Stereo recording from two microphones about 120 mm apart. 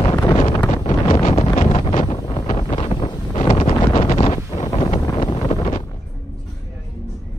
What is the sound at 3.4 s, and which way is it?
Wind noise, 55° left (ahead or behind).